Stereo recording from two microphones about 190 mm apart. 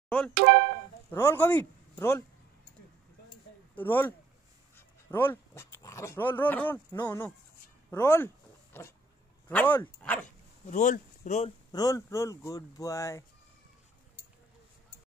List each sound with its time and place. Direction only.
0.3 s speech: 60° right (ahead or behind)
1.1 s speech: 10° left (ahead or behind)
3.7 s speech: 10° left (ahead or behind)
8.7 s a sound: 10° left (ahead or behind)
9.5 s speech: 10° left (ahead or behind)
10.7 s speech: 40° left (ahead or behind)
11.7 s speech: 15° left (ahead or behind)